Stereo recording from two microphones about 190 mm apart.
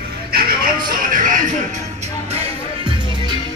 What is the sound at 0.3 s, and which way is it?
Music, 50° right (ahead or behind).